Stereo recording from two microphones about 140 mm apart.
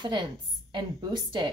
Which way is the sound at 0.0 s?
35° right (ahead or behind).